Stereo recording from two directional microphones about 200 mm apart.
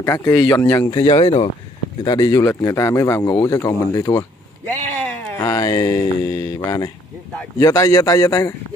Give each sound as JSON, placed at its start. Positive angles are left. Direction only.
{"t": 0.0, "sound": "speech", "side_deg": 15}
{"t": 0.8, "sound": "speech", "side_deg": 25}
{"t": 5.4, "sound": "speech", "side_deg": 15}